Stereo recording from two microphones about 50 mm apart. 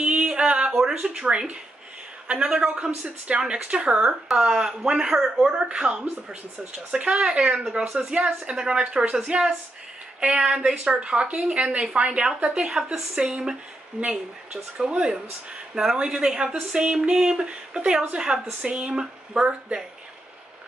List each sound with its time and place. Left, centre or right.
0.0 s a sound: right
0.7 s speech: centre
2.4 s speech: centre
2.7 s speech: centre
9.3 s speech: right